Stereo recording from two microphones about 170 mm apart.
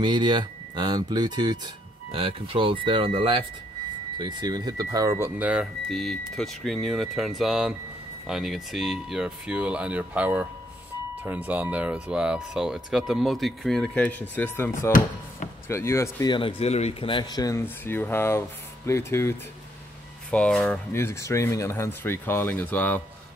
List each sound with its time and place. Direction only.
0.0 s speech: 25° right (ahead or behind); by 23.0 s 10° left (ahead or behind)